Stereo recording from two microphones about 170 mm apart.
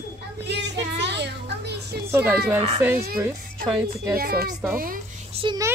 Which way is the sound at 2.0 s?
10° right (ahead or behind).